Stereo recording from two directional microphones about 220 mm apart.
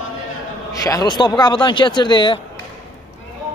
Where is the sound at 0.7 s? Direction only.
15° left (ahead or behind).